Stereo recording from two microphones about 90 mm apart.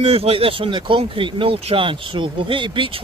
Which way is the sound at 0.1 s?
90° right.